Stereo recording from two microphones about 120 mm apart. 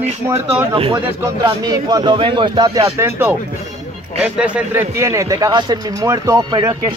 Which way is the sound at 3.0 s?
20° right (ahead or behind).